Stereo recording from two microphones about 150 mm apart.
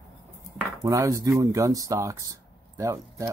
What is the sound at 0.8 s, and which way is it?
Speech, 20° right (ahead or behind).